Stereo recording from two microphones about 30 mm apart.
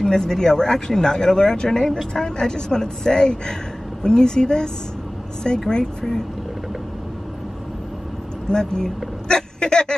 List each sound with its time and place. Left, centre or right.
0.0 s speech: centre
5.7 s speech: left
8.5 s speech: left